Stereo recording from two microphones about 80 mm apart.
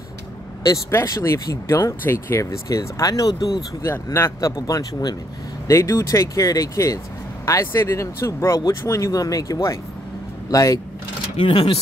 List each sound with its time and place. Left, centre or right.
0.9 s speech: left
3.8 s speech: left
5.7 s speech: left
11.4 s speech: left